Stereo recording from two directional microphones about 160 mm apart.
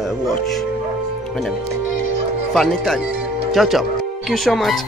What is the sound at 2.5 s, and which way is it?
Speech, centre (ahead or behind).